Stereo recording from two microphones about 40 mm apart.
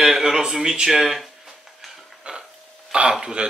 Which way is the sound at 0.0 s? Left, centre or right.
Centre.